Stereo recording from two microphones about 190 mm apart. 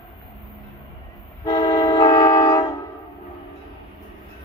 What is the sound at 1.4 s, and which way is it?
Train, 25° left (ahead or behind).